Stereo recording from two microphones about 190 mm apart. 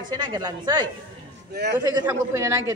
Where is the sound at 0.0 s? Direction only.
20° right (ahead or behind).